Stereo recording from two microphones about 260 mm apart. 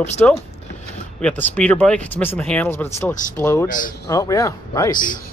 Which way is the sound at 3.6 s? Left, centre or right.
Left.